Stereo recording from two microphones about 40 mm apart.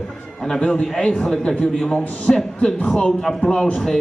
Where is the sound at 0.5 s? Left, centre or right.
Left.